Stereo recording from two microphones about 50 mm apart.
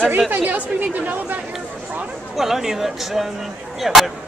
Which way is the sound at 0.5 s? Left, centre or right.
Right.